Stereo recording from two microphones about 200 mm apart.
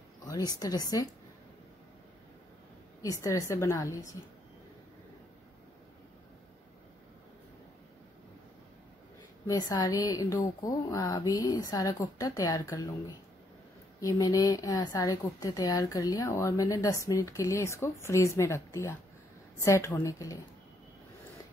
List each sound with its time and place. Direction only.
0.2 s speech: 20° left (ahead or behind)
3.0 s a woman's voice: 15° left (ahead or behind)
9.5 s a woman's voice: 20° left (ahead or behind)
13.9 s a woman's voice: 15° left (ahead or behind)